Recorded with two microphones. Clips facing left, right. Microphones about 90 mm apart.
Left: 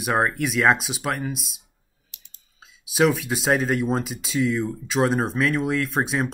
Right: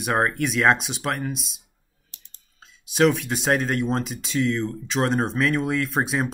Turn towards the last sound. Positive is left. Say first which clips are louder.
# even
turn(degrees=0)  # may be behind; listen again after turning